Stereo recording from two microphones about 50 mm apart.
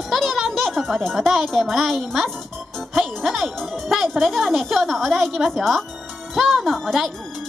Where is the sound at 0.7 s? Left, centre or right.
Centre.